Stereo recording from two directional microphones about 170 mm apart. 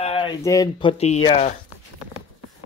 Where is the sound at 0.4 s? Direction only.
20° left (ahead or behind); by 1.2 s 40° left (ahead or behind).